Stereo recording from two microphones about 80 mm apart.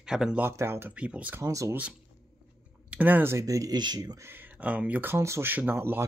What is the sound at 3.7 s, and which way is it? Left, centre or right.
Speech, right.